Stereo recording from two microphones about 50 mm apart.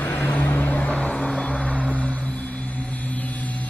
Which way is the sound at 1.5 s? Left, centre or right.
Left.